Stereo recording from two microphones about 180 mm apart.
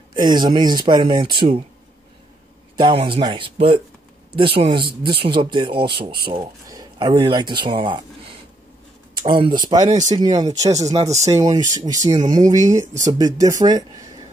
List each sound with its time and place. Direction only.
0.1 s speech: 25° right (ahead or behind)
2.8 s speech: 30° right (ahead or behind)
9.8 s speech: 40° right (ahead or behind)
10.1 s speech: 25° right (ahead or behind)
12.2 s speech: 45° right (ahead or behind)
12.4 s speech: 20° right (ahead or behind)
12.7 s speech: 40° right (ahead or behind)
13.2 s speech: 20° right (ahead or behind)